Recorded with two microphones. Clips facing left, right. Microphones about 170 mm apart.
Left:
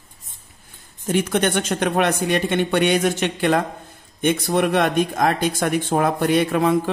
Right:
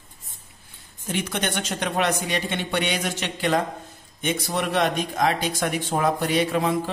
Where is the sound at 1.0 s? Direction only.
50° left (ahead or behind).